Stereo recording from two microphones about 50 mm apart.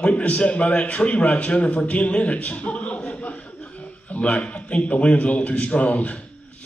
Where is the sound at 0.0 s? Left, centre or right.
Left.